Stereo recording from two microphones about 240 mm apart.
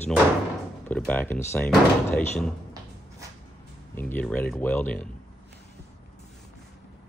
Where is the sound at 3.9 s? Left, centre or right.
Centre.